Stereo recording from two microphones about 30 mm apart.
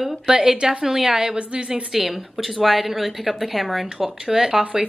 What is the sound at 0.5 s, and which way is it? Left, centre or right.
Speech, right.